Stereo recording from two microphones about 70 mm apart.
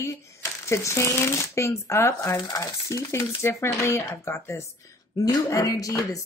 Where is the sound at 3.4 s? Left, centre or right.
Left.